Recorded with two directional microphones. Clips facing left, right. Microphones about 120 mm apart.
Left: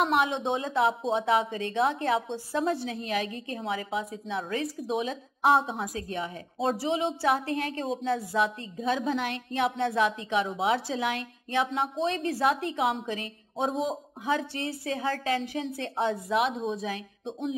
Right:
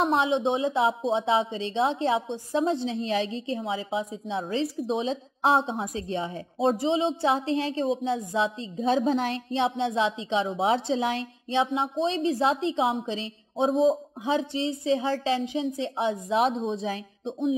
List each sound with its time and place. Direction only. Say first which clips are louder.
0.0 s a woman's voice: right 2 dB; 25° right (ahead or behind)